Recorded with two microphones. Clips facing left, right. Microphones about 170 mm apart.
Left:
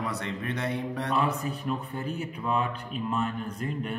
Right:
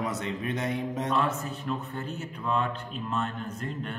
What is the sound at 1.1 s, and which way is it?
Speech, 5° left (ahead or behind).